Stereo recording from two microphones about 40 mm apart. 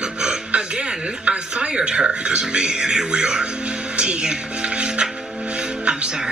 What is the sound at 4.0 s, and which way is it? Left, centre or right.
Music, right.